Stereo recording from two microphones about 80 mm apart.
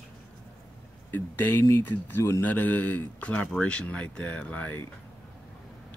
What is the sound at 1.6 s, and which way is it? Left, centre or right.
Speech, left.